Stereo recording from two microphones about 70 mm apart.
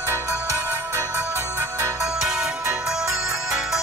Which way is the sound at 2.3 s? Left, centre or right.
Centre.